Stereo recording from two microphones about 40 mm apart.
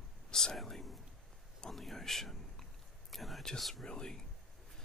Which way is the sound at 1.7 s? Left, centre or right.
Centre.